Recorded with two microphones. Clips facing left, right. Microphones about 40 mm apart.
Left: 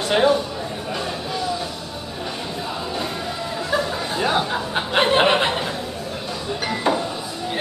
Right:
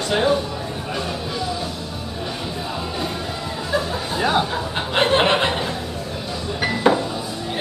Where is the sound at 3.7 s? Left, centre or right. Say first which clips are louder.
Right 1 dB; centre.